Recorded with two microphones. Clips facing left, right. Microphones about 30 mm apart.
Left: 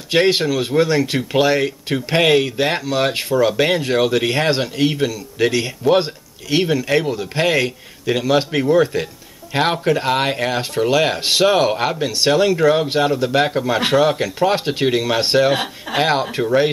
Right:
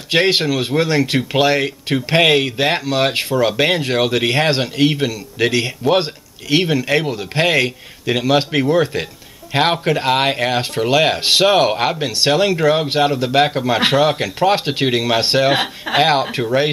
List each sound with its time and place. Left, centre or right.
0.1 s speech: centre